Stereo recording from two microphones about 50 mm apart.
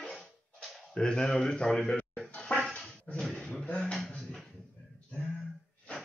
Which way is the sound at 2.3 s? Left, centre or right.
Left.